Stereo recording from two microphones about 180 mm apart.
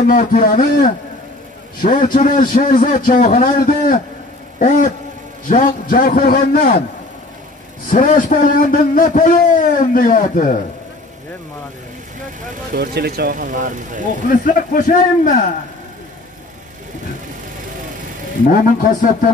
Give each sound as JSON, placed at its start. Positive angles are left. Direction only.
{"t": 0.0, "sound": "a man's voice", "side_deg": 50}
{"t": 7.9, "sound": "a man's voice", "side_deg": 50}
{"t": 12.7, "sound": "speech", "side_deg": -60}
{"t": 14.4, "sound": "a man's voice", "side_deg": 50}
{"t": 18.5, "sound": "a man's voice", "side_deg": 50}